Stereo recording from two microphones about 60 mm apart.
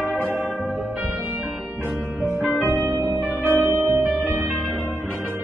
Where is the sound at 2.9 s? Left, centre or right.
Right.